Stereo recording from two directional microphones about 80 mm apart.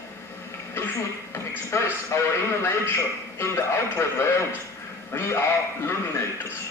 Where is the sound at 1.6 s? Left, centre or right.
Left.